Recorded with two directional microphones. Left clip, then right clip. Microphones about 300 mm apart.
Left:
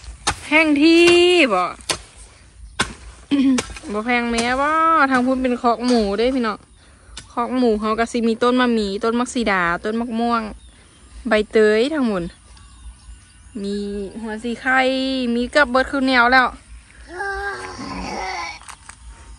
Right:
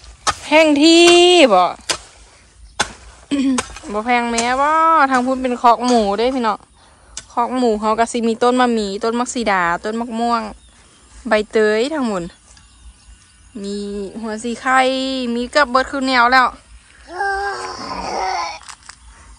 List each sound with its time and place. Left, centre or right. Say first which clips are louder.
0.5 s speech: right 3 dB; centre
3.3 s speech: even; centre
13.6 s speech: right 1 dB; centre
17.6 s a sound: right 5 dB; centre
18.6 s babbling: right 2 dB; centre